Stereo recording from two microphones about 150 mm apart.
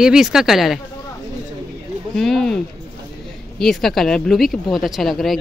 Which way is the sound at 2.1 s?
Centre (ahead or behind).